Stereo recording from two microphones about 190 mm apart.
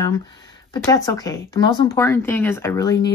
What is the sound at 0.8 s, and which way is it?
Speech, 15° left (ahead or behind).